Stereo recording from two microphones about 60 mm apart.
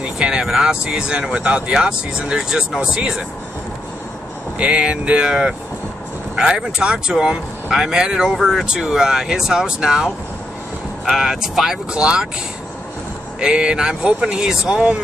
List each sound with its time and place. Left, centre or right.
0.0 s speech: centre
4.6 s speech: centre
13.4 s speech: centre